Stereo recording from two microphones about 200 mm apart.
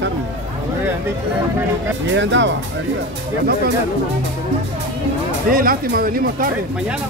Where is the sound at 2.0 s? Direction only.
65° right (ahead or behind).